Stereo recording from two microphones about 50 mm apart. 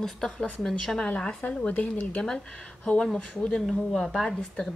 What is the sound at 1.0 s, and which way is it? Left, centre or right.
Speech, centre.